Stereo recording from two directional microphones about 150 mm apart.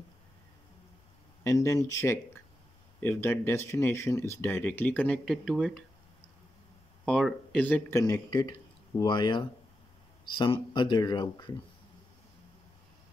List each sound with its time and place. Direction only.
1.4 s speech: 20° left (ahead or behind); by 5.9 s centre (ahead or behind)
7.1 s speech: 5° left (ahead or behind)
8.0 s speech: 25° left (ahead or behind)